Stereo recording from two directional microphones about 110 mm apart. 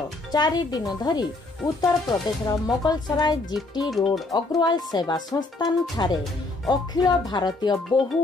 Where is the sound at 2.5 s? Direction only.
40° left (ahead or behind).